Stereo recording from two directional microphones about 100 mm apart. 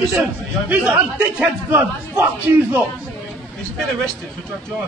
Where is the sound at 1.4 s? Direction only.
15° right (ahead or behind).